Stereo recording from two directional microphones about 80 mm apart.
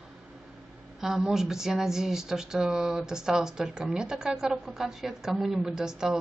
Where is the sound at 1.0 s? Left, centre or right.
Centre.